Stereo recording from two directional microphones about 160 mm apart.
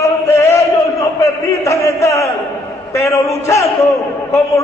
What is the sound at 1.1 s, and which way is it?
A man's voice, 15° left (ahead or behind).